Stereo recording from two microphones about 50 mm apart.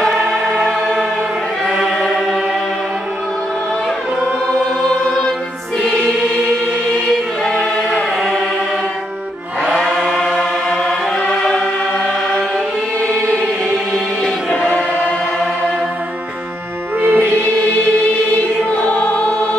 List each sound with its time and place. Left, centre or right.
1.8 s chant: centre
7.4 s choir: centre
9.9 s chant: centre
17.0 s music: right
18.7 s music: left